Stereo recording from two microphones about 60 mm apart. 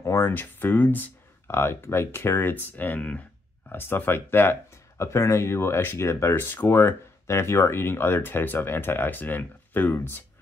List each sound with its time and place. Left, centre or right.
0.0 s a sound: left
0.3 s speech: left
3.6 s speech: left